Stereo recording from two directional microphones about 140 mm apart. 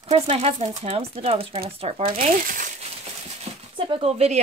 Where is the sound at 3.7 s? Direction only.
45° right (ahead or behind).